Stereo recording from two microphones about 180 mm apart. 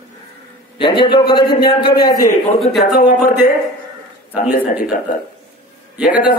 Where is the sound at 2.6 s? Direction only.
Centre (ahead or behind).